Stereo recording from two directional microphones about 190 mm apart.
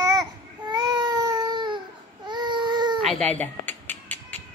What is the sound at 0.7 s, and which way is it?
Baby cry, 20° right (ahead or behind).